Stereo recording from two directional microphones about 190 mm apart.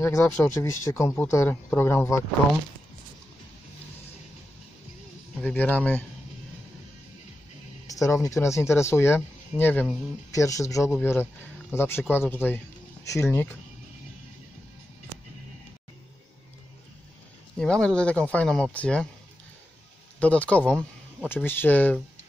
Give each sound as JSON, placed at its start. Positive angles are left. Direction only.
{"t": 0.0, "sound": "speech", "side_deg": 15}
{"t": 5.4, "sound": "speech", "side_deg": 10}
{"t": 7.8, "sound": "speech", "side_deg": 15}
{"t": 17.6, "sound": "speech", "side_deg": 5}
{"t": 20.2, "sound": "speech", "side_deg": 5}